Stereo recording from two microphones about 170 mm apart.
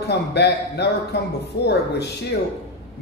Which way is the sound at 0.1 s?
80° left.